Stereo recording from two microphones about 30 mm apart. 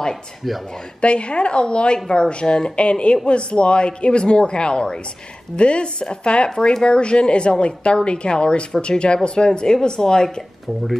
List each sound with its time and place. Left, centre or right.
0.4 s speech: centre
1.0 s speech: left